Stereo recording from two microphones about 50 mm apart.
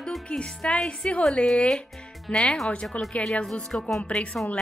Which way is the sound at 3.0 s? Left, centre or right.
Left.